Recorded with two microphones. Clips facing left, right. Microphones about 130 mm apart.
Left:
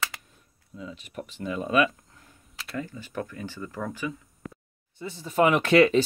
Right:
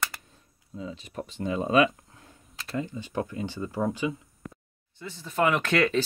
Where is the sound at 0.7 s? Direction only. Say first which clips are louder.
Right 2 dB; 30° right (ahead or behind).